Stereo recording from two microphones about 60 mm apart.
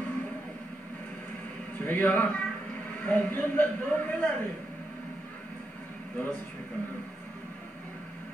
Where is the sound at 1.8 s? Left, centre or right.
Left.